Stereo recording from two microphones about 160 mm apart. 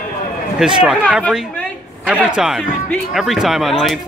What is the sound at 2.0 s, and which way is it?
Speech, 5° right (ahead or behind).